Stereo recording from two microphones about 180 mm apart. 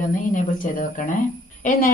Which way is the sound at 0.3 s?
45° left (ahead or behind).